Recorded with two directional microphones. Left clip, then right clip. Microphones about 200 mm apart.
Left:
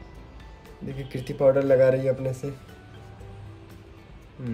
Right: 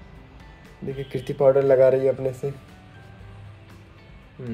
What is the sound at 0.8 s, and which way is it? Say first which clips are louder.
Speech: right 6 dB; 25° right (ahead or behind).